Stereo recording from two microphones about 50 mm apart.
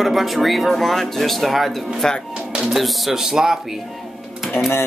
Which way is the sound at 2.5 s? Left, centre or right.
Centre.